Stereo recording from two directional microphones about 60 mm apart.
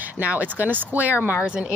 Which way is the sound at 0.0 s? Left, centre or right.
Right.